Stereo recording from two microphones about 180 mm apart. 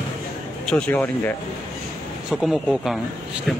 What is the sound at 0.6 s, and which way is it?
Speech, 5° left (ahead or behind).